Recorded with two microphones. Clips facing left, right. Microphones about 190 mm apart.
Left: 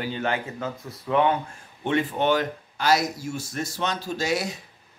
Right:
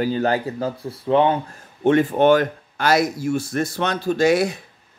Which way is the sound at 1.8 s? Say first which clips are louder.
Right 8 dB; 50° right (ahead or behind).